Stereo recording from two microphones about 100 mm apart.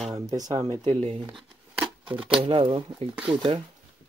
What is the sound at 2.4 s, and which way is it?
Speech, 65° right (ahead or behind).